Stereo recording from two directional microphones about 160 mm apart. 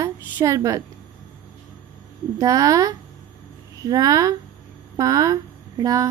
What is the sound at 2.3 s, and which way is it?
A woman's voice, 20° right (ahead or behind).